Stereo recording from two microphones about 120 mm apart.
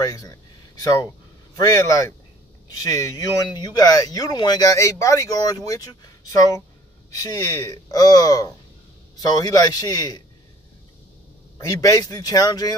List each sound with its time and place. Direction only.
0.0 s speech: 30° left (ahead or behind)
11.5 s speech: 30° left (ahead or behind)